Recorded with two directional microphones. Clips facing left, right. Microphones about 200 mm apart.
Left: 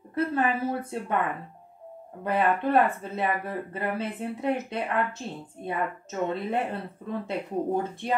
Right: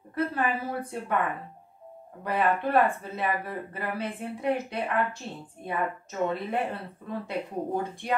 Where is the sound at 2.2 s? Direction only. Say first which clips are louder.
Left 1 dB; 25° left (ahead or behind).